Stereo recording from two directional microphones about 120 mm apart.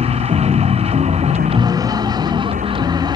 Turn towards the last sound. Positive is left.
turn(degrees=-35)  # may be behind; listen again after turning